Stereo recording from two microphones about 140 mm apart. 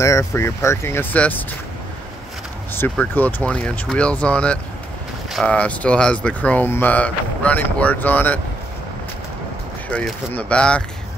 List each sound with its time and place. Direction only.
0.0 s speech: 20° left (ahead or behind)
2.7 s speech: 15° left (ahead or behind)
9.8 s speech: 10° left (ahead or behind)